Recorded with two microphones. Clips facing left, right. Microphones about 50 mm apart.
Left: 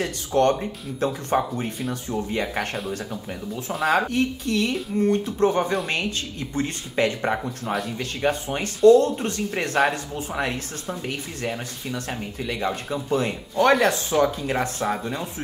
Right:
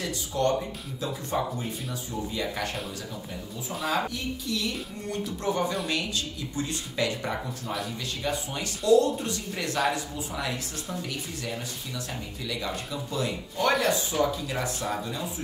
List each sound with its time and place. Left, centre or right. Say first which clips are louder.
0.0 s speech: left 7 dB; left
3.8 s speech: left 8 dB; left